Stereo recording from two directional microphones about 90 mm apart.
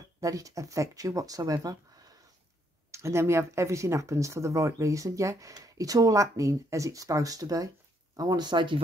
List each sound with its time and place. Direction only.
0.2 s speech: 40° right (ahead or behind)
2.9 s speech: 30° right (ahead or behind)
8.2 s speech: 50° right (ahead or behind)